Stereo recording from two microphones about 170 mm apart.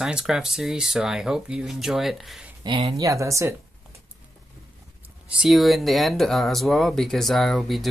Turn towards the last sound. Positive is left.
turn(degrees=0)  # may be behind; listen again after turning